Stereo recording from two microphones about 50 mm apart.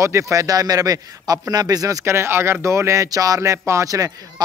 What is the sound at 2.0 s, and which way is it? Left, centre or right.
Speech, right.